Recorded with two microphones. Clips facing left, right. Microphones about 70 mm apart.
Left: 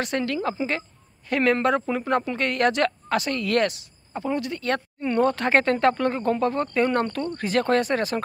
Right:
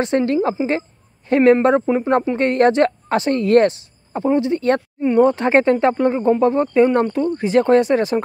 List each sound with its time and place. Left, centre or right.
0.0 s speech: right
5.0 s speech: centre